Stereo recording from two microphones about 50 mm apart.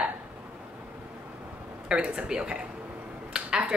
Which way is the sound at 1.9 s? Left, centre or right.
Right.